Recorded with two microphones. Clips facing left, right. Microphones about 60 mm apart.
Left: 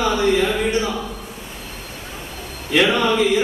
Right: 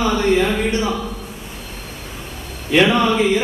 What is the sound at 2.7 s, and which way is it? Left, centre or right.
Speech, right.